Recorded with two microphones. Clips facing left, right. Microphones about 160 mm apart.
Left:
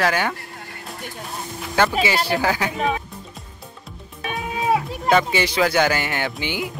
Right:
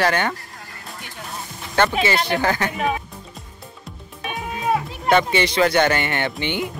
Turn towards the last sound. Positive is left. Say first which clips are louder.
# right 2 dB
turn(degrees=5)  # may be behind; listen again after turning